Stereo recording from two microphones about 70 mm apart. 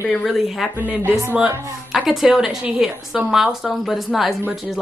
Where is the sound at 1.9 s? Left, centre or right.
Centre.